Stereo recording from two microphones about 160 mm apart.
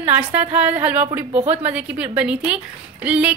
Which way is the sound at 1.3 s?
40° right (ahead or behind).